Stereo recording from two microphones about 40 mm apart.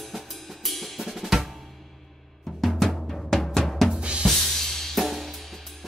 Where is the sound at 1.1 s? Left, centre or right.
Centre.